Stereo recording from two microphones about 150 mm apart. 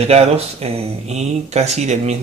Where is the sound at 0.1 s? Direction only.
40° right (ahead or behind).